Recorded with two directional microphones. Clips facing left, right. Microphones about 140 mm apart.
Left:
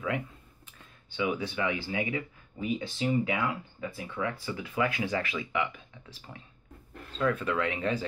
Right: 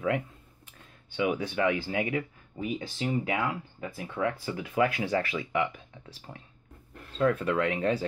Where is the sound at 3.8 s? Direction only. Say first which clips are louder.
Right 3 dB; 50° right (ahead or behind).